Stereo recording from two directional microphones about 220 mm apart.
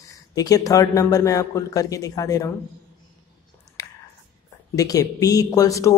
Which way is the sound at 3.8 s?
15° left (ahead or behind).